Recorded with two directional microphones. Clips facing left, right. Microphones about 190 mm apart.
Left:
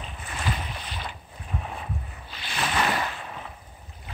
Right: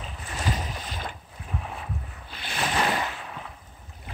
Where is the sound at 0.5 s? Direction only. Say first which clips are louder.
Right 1 dB; 40° right (ahead or behind).